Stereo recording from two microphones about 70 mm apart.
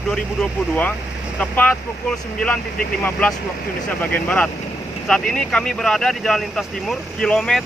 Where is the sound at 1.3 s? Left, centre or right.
Left.